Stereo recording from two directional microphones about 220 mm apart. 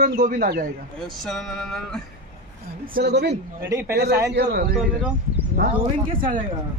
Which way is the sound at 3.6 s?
10° right (ahead or behind).